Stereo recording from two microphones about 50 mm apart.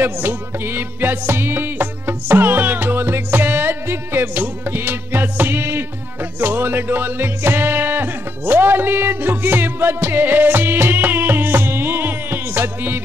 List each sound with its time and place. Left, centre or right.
0.0 s music: right